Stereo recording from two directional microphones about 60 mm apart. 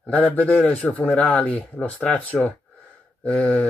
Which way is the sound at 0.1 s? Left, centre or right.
Left.